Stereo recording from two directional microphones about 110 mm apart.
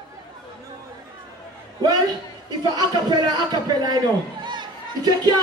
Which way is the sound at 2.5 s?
40° right (ahead or behind).